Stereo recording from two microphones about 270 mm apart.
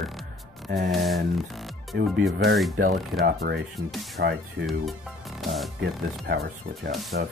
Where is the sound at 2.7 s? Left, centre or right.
Right.